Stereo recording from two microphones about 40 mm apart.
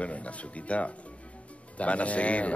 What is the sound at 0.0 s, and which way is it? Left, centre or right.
A woman's voice, left.